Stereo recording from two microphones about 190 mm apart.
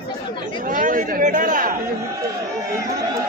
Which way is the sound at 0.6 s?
45° right (ahead or behind).